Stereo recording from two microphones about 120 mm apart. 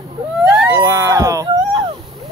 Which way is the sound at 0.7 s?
30° right (ahead or behind).